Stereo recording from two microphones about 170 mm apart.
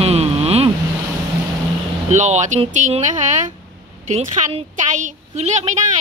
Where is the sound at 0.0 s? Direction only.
35° right (ahead or behind).